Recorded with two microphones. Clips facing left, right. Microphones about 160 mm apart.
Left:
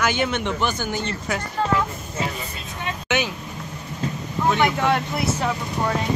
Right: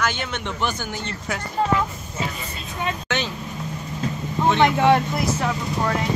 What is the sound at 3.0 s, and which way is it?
Vehicle, 10° left (ahead or behind).